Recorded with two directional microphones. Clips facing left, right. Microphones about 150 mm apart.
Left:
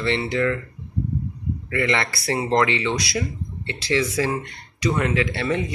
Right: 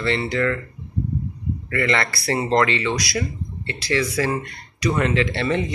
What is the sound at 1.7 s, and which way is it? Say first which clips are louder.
Speech: right 1 dB; 15° left (ahead or behind).